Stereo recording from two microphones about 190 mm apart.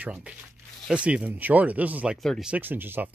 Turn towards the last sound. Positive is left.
turn(degrees=-10)  # may be behind; listen again after turning